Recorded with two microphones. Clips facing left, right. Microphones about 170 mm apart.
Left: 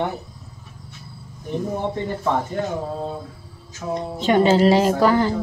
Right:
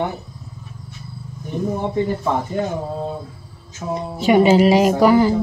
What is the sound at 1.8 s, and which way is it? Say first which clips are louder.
Speech: right 4 dB; 5° right (ahead or behind).